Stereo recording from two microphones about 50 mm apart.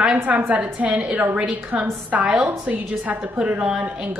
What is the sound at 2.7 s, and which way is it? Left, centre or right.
A woman's voice, right.